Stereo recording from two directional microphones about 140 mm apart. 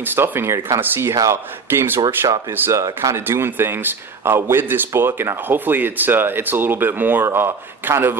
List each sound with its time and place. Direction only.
0.0 s a man's voice: 15° right (ahead or behind)
2.0 s speech: 35° right (ahead or behind)
2.5 s a man's voice: 15° right (ahead or behind)